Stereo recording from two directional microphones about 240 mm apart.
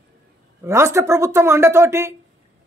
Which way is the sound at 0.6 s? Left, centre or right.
Centre.